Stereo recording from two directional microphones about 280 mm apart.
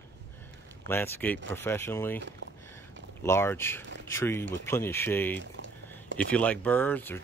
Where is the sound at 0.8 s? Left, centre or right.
Centre.